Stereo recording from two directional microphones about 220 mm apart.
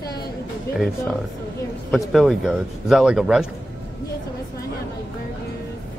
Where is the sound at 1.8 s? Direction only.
Centre (ahead or behind).